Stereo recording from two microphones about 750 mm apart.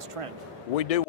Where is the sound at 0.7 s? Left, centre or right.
Left.